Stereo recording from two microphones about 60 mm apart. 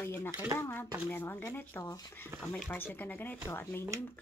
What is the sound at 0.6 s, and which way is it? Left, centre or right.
Speech, left.